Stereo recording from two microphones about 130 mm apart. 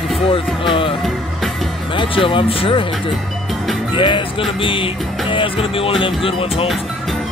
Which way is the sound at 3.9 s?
40° left (ahead or behind).